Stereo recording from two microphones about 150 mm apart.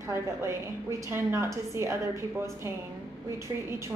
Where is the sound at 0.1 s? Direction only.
20° right (ahead or behind).